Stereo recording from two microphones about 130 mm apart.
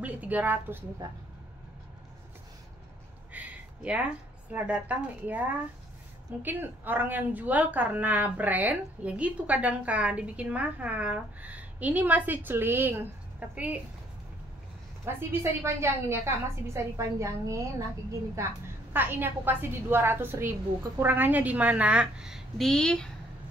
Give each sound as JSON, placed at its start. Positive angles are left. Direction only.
{"t": 0.0, "sound": "a woman's voice", "side_deg": -10}
{"t": 3.3, "sound": "a woman's voice", "side_deg": -10}
{"t": 15.0, "sound": "a woman's voice", "side_deg": -20}
{"t": 18.9, "sound": "a woman's voice", "side_deg": -15}